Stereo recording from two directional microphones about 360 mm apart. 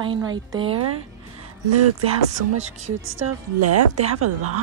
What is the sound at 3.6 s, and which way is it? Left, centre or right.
Speech, right.